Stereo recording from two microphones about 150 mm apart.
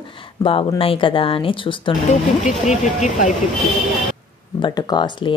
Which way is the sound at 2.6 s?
55° left (ahead or behind).